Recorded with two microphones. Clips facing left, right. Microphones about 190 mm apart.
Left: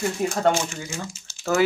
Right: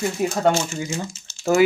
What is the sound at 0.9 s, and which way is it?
Speech, 15° right (ahead or behind).